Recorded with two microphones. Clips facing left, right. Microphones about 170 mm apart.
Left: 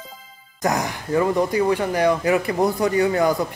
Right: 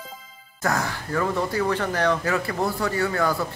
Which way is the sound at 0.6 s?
15° left (ahead or behind).